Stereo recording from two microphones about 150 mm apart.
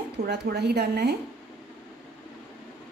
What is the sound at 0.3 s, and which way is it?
Speech, 90° right.